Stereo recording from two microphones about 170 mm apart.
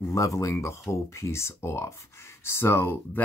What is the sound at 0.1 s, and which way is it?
Speech, 20° left (ahead or behind).